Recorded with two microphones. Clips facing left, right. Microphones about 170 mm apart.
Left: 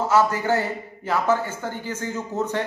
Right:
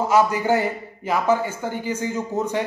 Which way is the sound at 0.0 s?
15° right (ahead or behind).